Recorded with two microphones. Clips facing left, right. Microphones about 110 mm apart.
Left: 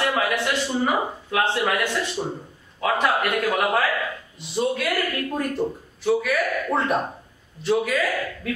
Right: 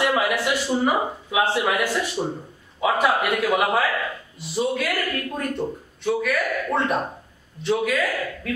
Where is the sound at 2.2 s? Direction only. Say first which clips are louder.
Right 2 dB; 20° right (ahead or behind).